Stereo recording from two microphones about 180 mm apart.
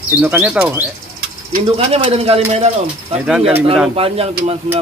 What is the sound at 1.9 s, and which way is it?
Speech, 35° right (ahead or behind).